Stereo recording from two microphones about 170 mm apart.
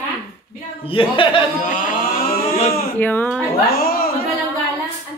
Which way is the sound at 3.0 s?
10° left (ahead or behind).